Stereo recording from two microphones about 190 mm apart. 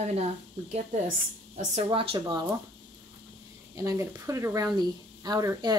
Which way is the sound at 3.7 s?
15° right (ahead or behind).